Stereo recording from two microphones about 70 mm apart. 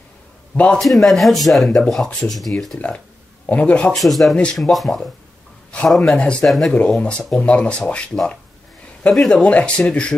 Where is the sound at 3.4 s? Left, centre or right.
Left.